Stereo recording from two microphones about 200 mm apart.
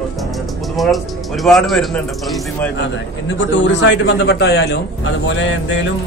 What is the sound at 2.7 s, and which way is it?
A man's voice, 65° left (ahead or behind).